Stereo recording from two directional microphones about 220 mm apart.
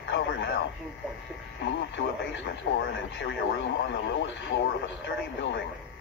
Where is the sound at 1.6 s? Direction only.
55° left (ahead or behind).